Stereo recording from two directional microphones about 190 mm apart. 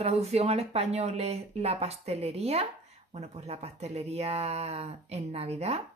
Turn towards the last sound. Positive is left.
turn(degrees=-35)  # may be behind; listen again after turning